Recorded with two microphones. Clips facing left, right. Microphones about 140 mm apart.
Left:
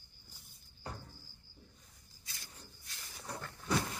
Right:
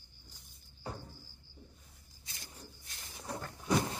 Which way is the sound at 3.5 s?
20° right (ahead or behind).